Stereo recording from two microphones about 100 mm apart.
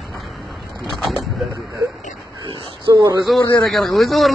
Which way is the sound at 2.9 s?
40° right (ahead or behind).